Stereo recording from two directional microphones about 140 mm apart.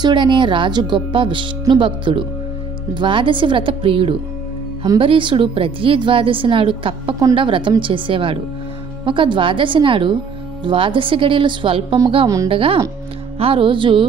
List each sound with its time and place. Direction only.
0.0 s speech: 35° right (ahead or behind)